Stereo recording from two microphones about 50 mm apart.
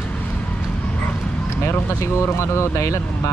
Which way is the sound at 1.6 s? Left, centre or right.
Left.